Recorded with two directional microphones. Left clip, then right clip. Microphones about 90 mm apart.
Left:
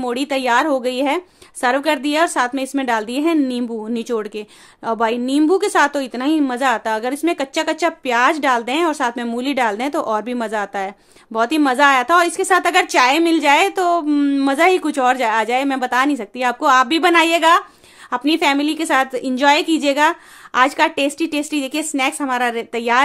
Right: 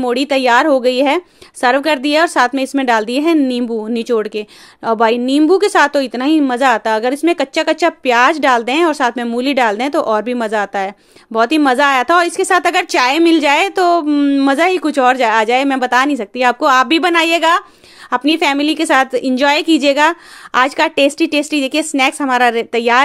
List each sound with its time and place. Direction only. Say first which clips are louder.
0.0 s a woman's voice: right 6 dB; 30° right (ahead or behind)
14.0 s a woman's voice: right 4 dB; 15° right (ahead or behind)
14.5 s a woman's voice: right 2 dB; 30° right (ahead or behind)